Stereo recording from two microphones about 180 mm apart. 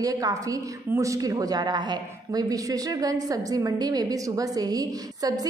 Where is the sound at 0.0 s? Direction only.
20° right (ahead or behind).